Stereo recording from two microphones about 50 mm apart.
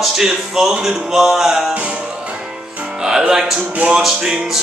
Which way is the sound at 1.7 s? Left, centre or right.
Right.